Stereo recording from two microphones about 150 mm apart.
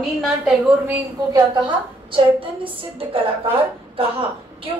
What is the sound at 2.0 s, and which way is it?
A woman's voice, 35° right (ahead or behind).